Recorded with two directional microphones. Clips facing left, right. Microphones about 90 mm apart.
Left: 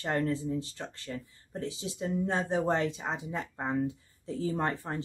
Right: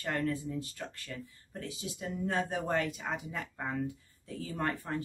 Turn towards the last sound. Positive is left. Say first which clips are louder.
# left 4 dB
turn(degrees=25)  # may be behind; listen again after turning